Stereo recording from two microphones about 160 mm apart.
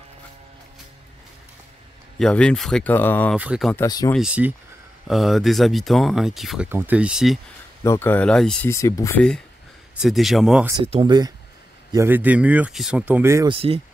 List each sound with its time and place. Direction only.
2.1 s speech: 5° left (ahead or behind)
3.3 s speech: 5° right (ahead or behind)
3.8 s speech: 25° left (ahead or behind)
4.1 s speech: 5° right (ahead or behind)
7.8 s speech: 15° left (ahead or behind)
8.6 s speech: 20° left (ahead or behind)
9.9 s speech: centre (ahead or behind)
10.8 s speech: 30° right (ahead or behind)
11.9 s speech: 15° right (ahead or behind)
13.5 s speech: 35° right (ahead or behind)